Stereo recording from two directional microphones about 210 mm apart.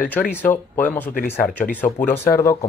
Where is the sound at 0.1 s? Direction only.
10° left (ahead or behind).